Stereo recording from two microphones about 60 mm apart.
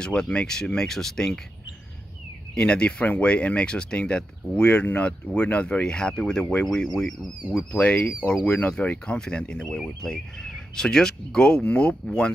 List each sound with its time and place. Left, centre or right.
0.0 s speech: centre
2.5 s speech: centre
7.5 s speech: left